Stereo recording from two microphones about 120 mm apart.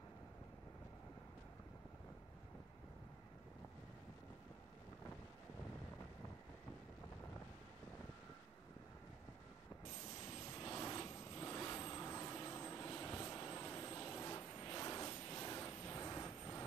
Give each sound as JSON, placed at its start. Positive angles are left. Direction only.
{"t": 10.5, "sound": "vehicle", "side_deg": 25}